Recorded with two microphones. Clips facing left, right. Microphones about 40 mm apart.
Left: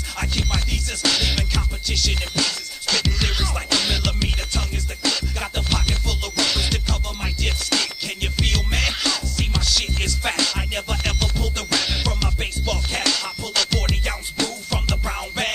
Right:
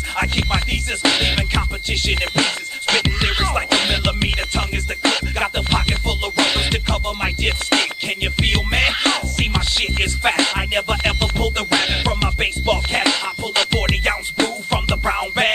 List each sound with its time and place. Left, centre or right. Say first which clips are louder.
0.2 s music: right 6 dB; right